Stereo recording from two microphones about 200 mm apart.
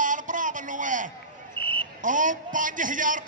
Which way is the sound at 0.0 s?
40° right (ahead or behind).